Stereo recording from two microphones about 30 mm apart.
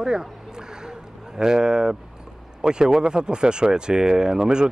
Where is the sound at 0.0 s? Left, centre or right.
Right.